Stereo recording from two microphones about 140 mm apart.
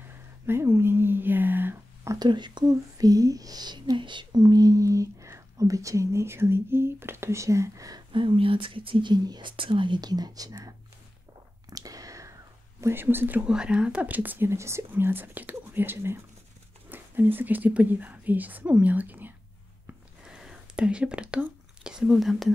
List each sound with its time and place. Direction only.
0.5 s a sound: 15° right (ahead or behind)
2.1 s speech: 30° right (ahead or behind)
8.1 s speech: 35° right (ahead or behind)
11.7 s chewing: 25° right (ahead or behind)
12.8 s speech: 15° right (ahead or behind)